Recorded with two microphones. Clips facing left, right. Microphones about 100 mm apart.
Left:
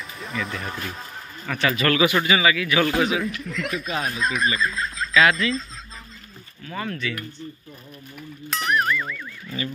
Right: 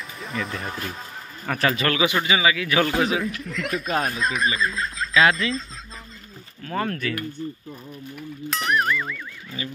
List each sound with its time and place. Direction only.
0.2 s speech: centre (ahead or behind)
1.5 s a man's voice: 35° right (ahead or behind)
2.9 s speech: centre (ahead or behind)
5.4 s a man's voice: 30° right (ahead or behind)
6.6 s speech: 50° right (ahead or behind)
8.2 s speech: centre (ahead or behind)